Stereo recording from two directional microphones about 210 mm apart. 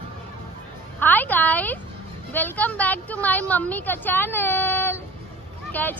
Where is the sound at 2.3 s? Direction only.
10° left (ahead or behind).